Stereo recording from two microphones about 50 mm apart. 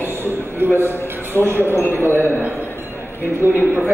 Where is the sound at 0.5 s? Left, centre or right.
Right.